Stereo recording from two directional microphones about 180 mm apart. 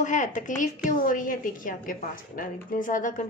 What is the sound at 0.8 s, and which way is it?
A woman's voice, 50° left (ahead or behind).